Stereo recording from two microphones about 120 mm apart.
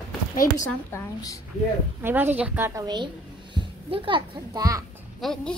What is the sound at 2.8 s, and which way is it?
A woman's voice, 35° right (ahead or behind).